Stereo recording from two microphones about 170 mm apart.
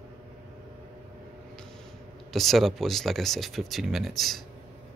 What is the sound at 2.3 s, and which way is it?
A man's voice, centre (ahead or behind).